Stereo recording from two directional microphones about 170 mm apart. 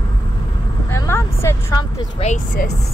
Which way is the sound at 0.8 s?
15° left (ahead or behind).